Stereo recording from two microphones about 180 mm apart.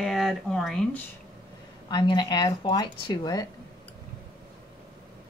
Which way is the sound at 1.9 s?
25° left (ahead or behind).